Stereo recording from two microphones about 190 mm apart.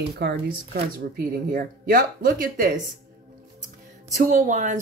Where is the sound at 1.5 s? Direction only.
50° right (ahead or behind).